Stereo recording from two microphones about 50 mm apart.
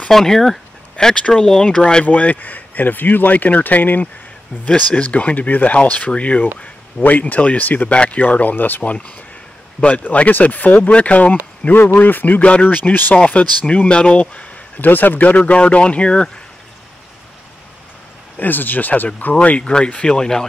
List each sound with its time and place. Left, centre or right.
0.1 s speech: centre
0.9 s speech: centre
2.0 s speech: left
4.6 s speech: left
7.9 s speech: left
8.2 s speech: left
9.8 s speech: left
11.7 s speech: left
13.1 s speech: left
14.8 s speech: left
18.4 s speech: left
19.3 s speech: left